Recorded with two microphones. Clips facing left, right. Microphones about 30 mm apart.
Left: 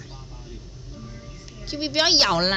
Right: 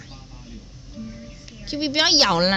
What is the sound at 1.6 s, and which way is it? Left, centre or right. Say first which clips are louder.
Speech: right 2 dB; right.